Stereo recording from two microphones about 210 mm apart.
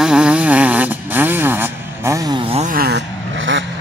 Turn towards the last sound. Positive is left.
turn(degrees=-60)  # may be behind; listen again after turning